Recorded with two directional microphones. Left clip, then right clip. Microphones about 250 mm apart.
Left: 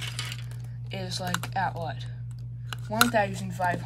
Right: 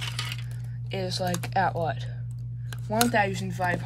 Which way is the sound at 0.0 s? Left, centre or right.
Right.